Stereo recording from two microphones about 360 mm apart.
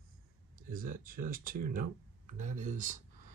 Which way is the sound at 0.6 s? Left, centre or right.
Right.